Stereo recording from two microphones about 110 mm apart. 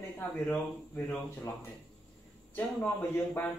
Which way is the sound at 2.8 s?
15° left (ahead or behind).